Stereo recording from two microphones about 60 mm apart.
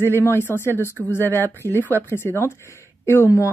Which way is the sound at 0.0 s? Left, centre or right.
Left.